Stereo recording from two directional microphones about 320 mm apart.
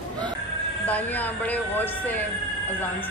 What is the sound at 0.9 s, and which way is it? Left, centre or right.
Speech, centre.